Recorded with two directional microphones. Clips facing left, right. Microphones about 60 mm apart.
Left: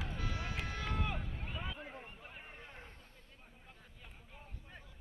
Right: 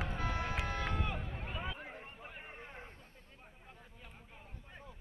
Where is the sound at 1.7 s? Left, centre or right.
Right.